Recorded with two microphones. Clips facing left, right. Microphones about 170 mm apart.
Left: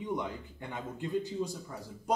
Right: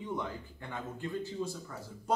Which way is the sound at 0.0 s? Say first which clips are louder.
Left 2 dB; 15° left (ahead or behind).